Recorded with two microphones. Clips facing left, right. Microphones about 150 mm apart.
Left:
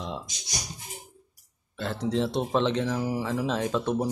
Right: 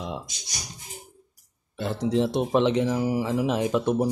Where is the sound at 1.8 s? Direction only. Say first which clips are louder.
Right 3 dB; 15° right (ahead or behind).